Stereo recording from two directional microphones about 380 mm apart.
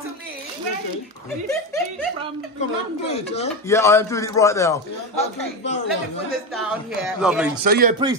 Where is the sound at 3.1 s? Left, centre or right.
Centre.